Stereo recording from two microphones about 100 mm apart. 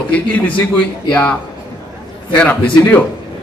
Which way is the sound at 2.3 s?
15° left (ahead or behind).